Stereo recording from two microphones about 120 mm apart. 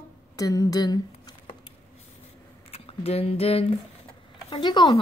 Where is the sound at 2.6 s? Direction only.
55° left (ahead or behind).